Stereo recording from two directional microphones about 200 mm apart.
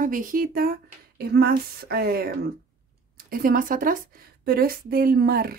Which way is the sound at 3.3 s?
45° right (ahead or behind).